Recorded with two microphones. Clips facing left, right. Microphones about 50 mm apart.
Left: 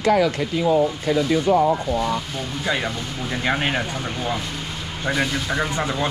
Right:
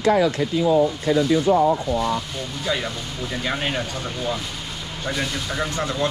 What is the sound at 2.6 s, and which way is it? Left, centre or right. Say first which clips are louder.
Speech: left 1 dB; centre.